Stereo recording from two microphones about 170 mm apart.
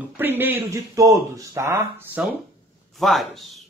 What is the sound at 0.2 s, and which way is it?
Speech, 10° right (ahead or behind).